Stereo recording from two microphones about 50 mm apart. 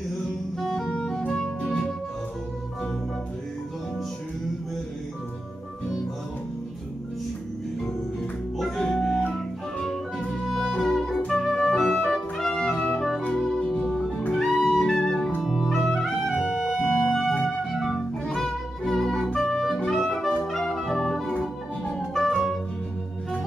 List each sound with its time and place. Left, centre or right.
0.6 s music: centre
8.5 s music: centre
13.4 s organ: centre
14.3 s music: centre
21.3 s organ: left
22.1 s music: centre